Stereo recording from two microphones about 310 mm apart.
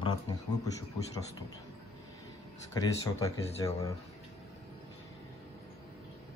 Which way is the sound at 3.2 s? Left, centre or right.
Centre.